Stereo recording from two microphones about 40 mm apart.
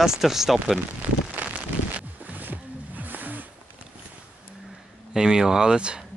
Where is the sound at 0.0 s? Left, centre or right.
Centre.